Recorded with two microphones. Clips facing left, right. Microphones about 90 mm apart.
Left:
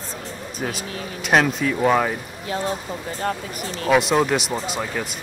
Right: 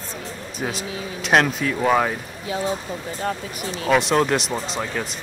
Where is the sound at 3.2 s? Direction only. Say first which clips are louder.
Left 1 dB; 45° left (ahead or behind).